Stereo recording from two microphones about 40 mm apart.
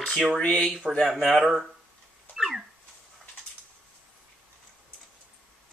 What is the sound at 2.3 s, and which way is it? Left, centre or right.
Dog, centre.